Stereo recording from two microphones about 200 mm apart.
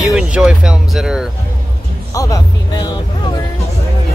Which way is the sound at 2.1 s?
15° left (ahead or behind).